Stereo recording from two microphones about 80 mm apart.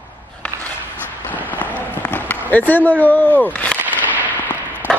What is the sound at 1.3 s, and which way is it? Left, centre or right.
Run, left.